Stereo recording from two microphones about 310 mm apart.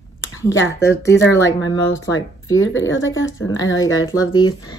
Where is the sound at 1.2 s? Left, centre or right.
Left.